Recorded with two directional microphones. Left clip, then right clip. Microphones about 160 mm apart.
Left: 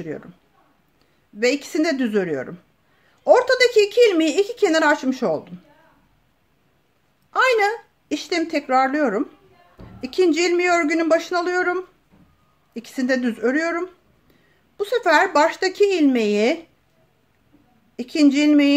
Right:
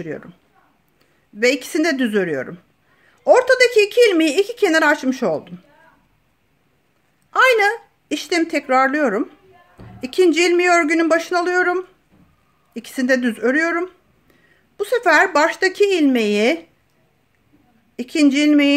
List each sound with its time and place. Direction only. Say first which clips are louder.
0.0 s speech: right 2 dB; 20° right (ahead or behind)
1.4 s speech: right 3 dB; 20° right (ahead or behind)
7.2 s speech: right 4 dB; 20° right (ahead or behind)
17.9 s speech: right 1 dB; 20° right (ahead or behind)